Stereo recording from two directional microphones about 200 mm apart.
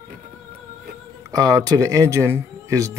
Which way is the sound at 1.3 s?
20° right (ahead or behind).